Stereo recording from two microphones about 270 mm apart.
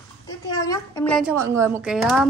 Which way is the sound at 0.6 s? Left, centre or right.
Centre.